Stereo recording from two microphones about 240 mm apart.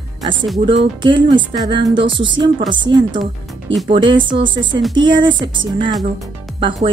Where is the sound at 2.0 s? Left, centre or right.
Right.